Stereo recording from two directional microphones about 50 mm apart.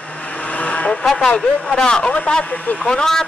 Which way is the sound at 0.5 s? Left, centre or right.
Left.